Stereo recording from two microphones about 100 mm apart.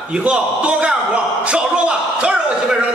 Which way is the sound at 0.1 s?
10° right (ahead or behind).